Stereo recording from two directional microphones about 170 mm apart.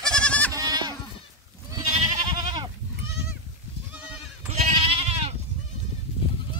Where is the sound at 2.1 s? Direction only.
25° right (ahead or behind).